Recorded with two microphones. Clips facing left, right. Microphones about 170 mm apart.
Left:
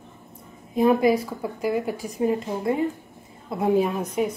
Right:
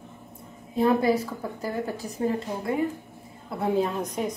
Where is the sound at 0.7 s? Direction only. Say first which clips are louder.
Left 3 dB; 15° left (ahead or behind).